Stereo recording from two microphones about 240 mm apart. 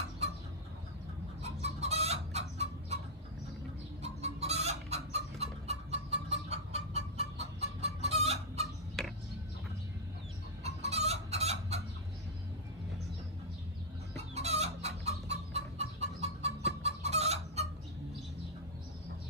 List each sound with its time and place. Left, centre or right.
1.4 s chicken: right
4.0 s chicken: right
9.0 s tick: centre
10.6 s chicken: right
14.3 s chicken: right